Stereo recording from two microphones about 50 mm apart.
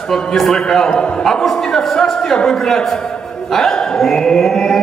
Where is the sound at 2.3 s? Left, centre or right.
Centre.